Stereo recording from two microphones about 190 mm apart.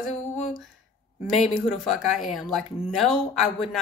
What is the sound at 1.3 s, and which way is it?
Speech, centre (ahead or behind).